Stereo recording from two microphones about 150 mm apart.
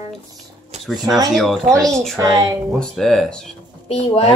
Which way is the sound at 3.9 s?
45° left (ahead or behind).